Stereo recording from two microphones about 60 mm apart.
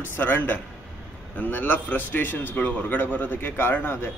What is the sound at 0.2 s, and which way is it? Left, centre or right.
A man's voice, left.